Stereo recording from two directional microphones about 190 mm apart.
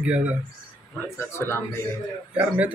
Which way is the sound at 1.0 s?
15° left (ahead or behind).